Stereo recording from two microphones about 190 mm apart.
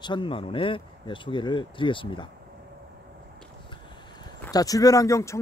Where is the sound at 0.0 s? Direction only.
25° left (ahead or behind).